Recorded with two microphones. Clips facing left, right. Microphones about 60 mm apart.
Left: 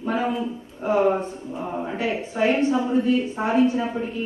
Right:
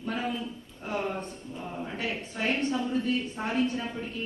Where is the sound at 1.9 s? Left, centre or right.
Centre.